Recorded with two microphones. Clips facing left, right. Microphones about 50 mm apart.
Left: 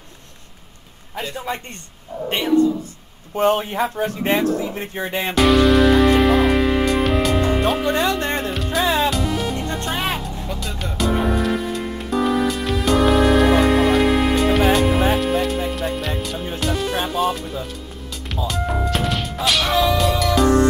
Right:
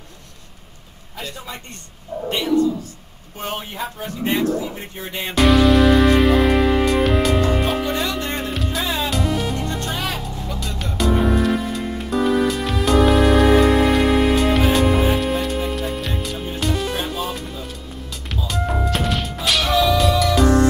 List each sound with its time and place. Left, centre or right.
1.1 s a man's voice: left
3.4 s speech: left
5.3 s music: centre
7.8 s music: centre
8.1 s music: left
8.4 s music: centre
9.9 s vehicle: left
10.4 s music: centre
18.5 s music: centre